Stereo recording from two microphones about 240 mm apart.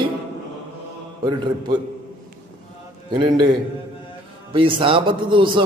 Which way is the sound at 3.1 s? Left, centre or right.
Centre.